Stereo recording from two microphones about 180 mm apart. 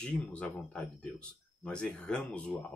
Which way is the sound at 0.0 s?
5° left (ahead or behind).